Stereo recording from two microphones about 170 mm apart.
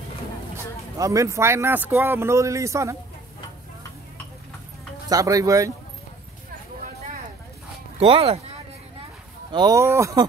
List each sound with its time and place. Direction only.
0.9 s speech: 20° right (ahead or behind)
5.1 s speech: 20° right (ahead or behind)
8.0 s speech: 35° right (ahead or behind)
9.5 s speech: 25° right (ahead or behind)